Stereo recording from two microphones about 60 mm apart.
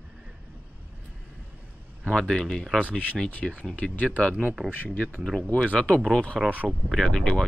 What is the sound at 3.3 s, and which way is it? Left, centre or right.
Speech, left.